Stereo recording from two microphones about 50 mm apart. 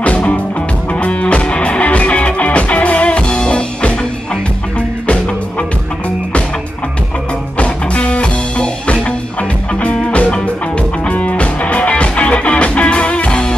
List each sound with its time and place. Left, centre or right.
0.0 s music: left
7.5 s music: left